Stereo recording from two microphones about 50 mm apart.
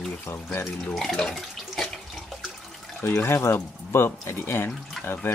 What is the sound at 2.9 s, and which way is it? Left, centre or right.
Speech, left.